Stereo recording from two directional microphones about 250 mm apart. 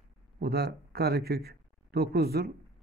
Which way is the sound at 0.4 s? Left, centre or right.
Right.